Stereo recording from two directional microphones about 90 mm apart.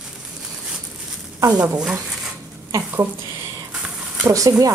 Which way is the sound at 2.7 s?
35° right (ahead or behind).